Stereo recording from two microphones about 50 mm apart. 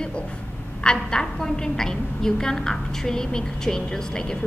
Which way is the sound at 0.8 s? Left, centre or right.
Centre.